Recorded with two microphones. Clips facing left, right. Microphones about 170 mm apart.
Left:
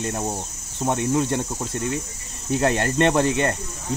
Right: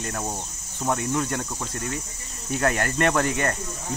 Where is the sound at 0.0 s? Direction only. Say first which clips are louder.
Left 4 dB; 25° left (ahead or behind).